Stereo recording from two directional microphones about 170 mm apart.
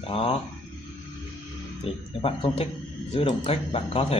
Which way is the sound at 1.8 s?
35° left (ahead or behind).